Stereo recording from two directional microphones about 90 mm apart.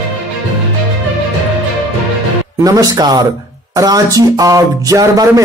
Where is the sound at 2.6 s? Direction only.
40° right (ahead or behind).